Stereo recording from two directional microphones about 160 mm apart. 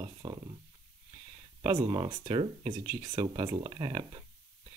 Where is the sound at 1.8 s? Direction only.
25° right (ahead or behind).